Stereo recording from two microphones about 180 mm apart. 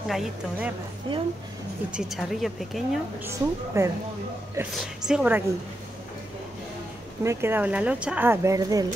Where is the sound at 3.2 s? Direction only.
15° right (ahead or behind).